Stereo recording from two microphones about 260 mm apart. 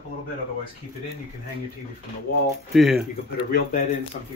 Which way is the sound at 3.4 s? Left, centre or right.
Left.